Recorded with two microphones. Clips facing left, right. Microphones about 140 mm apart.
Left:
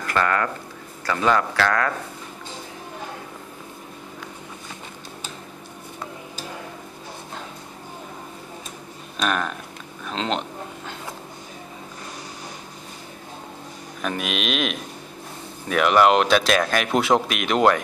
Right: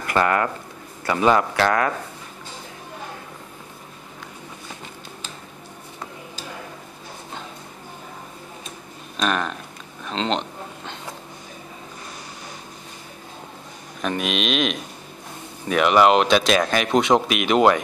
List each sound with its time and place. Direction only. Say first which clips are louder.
0.0 s a man's voice: right 2 dB; 20° right (ahead or behind)
9.1 s speech: right 1 dB; centre (ahead or behind)
14.0 s speech: right 2 dB; centre (ahead or behind)